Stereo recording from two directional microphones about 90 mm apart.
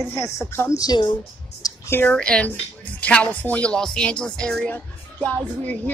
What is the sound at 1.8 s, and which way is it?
Speech, 25° left (ahead or behind).